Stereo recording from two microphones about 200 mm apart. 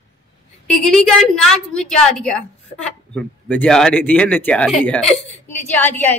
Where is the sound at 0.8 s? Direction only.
5° left (ahead or behind).